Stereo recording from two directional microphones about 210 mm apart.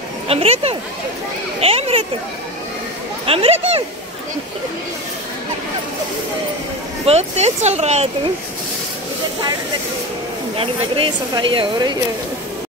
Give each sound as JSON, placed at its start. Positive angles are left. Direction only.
{"t": 0.3, "sound": "speech", "side_deg": -30}
{"t": 3.3, "sound": "speech", "side_deg": -30}
{"t": 7.1, "sound": "speech", "side_deg": -30}
{"t": 10.6, "sound": "speech", "side_deg": -25}